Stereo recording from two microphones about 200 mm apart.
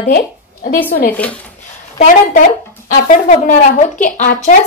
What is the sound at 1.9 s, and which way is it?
A woman's voice, 40° left (ahead or behind).